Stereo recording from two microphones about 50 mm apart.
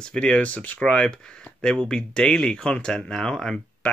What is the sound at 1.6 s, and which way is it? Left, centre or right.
Speech, centre.